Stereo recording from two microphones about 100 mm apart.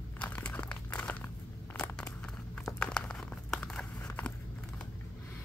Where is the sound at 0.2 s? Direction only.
15° left (ahead or behind).